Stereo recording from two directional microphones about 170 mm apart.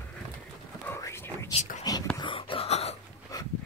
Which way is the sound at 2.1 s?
30° left (ahead or behind).